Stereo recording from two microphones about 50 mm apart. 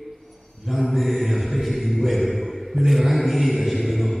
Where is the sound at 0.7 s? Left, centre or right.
Centre.